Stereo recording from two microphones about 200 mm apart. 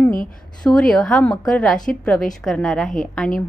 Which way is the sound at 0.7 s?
Centre (ahead or behind).